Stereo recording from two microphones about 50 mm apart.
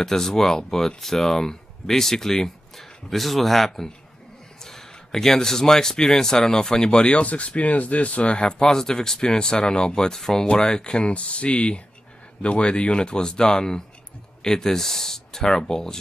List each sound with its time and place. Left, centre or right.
0.0 s speech: centre